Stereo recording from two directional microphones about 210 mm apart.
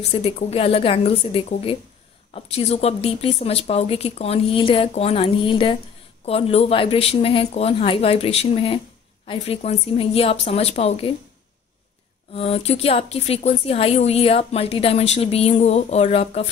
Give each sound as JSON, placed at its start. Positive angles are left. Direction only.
{"t": 0.1, "sound": "speech", "side_deg": 30}
{"t": 12.4, "sound": "speech", "side_deg": 30}